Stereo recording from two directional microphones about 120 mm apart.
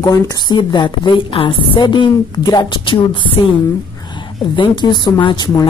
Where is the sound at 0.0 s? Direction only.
30° left (ahead or behind); by 3.3 s 45° left (ahead or behind).